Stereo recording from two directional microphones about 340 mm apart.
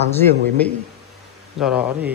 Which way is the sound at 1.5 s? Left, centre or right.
Centre.